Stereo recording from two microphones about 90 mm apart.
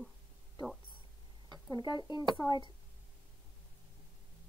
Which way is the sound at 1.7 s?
50° left (ahead or behind).